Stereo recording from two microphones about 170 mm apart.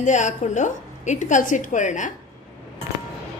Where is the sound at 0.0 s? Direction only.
45° left (ahead or behind).